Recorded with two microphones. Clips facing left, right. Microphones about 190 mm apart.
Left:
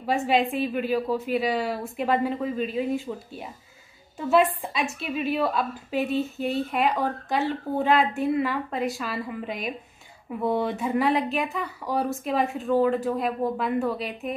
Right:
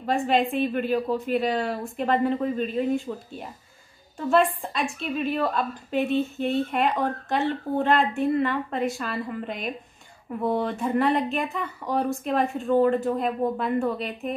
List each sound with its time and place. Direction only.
0.0 s a woman's voice: 5° left (ahead or behind)